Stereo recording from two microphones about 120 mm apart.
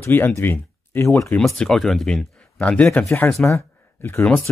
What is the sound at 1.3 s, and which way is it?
Speech, 5° left (ahead or behind).